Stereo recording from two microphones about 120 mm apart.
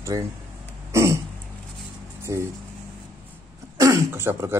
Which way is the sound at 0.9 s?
25° right (ahead or behind).